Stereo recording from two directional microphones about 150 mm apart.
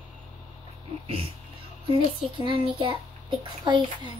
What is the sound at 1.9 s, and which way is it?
Child singing, 35° right (ahead or behind).